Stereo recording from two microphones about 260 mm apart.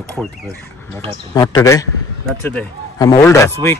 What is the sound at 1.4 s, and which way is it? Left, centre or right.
Speech, centre.